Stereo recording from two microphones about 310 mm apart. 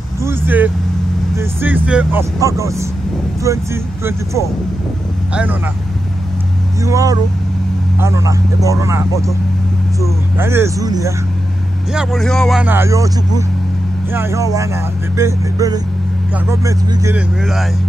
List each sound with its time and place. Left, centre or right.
0.2 s speech: centre
6.8 s speech: centre